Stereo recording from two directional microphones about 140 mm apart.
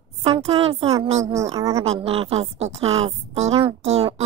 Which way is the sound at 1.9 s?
45° right (ahead or behind).